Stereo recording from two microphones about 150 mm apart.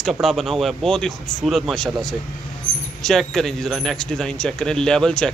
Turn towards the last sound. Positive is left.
turn(degrees=5)  # may be behind; listen again after turning